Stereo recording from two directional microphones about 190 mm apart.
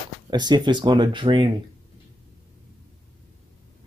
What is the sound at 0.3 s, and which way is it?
Speech, 20° right (ahead or behind).